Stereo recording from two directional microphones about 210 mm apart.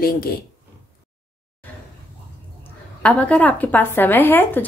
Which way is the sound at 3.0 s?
5° left (ahead or behind).